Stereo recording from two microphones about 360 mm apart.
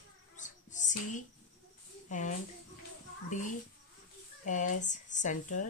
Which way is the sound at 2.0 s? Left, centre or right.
Left.